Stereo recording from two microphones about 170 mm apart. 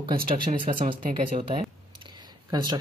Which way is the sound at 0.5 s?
30° right (ahead or behind).